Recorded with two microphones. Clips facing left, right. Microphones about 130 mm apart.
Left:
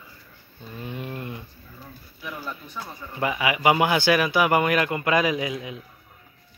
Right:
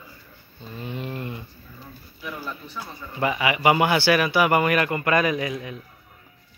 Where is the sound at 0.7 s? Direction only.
10° left (ahead or behind).